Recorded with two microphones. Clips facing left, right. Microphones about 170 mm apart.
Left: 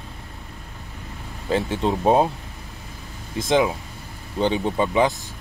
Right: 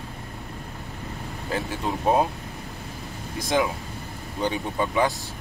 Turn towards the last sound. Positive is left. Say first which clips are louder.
# left 4 dB
turn(degrees=20)  # may be behind; listen again after turning